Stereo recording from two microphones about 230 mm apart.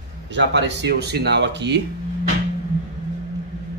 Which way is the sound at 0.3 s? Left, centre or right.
Right.